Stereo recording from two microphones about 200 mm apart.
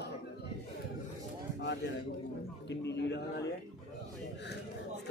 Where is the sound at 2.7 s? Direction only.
60° left (ahead or behind).